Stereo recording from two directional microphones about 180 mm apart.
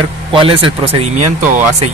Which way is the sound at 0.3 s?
30° right (ahead or behind).